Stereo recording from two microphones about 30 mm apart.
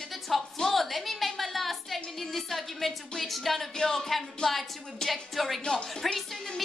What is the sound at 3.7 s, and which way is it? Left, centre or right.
A woman's voice, centre.